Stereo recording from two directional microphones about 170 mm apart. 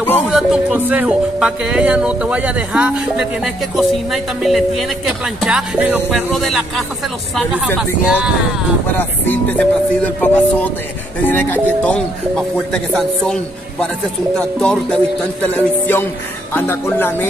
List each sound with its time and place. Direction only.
0.3 s speech: 5° right (ahead or behind)
8.9 s speech: 10° left (ahead or behind)